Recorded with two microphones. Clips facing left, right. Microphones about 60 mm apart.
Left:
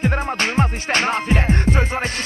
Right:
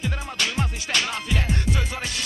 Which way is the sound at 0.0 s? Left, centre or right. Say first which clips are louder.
Left 7 dB; left.